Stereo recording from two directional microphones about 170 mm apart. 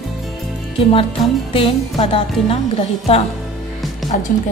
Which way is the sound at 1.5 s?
35° left (ahead or behind).